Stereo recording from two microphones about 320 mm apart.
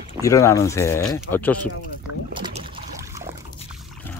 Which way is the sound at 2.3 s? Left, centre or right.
Centre.